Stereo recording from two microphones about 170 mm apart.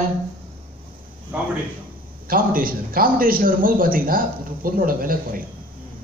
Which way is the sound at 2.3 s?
55° right (ahead or behind).